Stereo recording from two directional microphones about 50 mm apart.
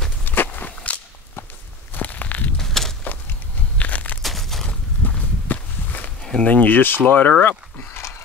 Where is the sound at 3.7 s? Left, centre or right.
Left.